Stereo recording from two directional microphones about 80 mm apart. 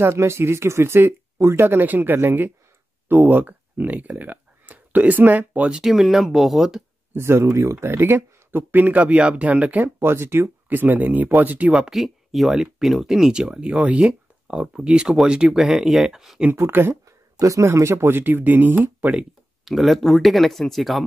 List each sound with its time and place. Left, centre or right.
0.0 s speech: right
5.8 s speech: centre
7.2 s speech: right
11.7 s speech: centre
16.4 s speech: right
17.4 s speech: right
19.6 s speech: centre